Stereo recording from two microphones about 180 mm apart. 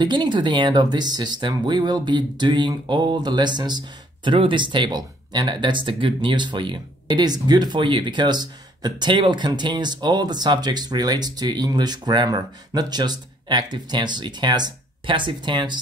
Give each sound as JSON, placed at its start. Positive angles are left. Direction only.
{"t": 0.0, "sound": "speech", "side_deg": -25}